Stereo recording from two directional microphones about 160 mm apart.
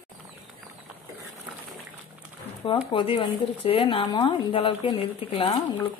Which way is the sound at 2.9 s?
35° left (ahead or behind).